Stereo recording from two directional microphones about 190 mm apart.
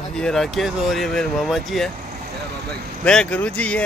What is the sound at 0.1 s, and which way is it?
A man's voice, centre (ahead or behind).